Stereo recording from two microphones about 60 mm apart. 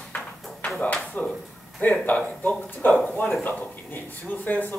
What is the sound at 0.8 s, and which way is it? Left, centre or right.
Speech, left.